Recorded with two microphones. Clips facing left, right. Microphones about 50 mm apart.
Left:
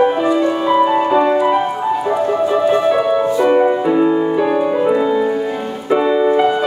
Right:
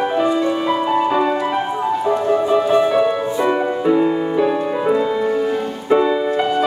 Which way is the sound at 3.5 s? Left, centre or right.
Centre.